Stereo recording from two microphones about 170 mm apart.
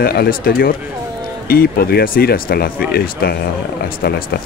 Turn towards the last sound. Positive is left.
turn(degrees=70)  # may be behind; listen again after turning